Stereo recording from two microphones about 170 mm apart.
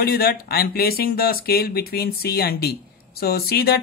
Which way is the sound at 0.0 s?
65° left (ahead or behind).